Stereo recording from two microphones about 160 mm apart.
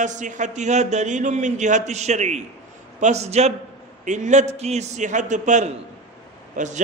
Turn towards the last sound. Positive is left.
turn(degrees=-50)  # may be behind; listen again after turning